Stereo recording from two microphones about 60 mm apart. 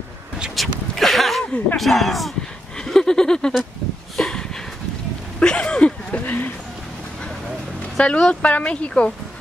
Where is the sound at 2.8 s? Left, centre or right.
Centre.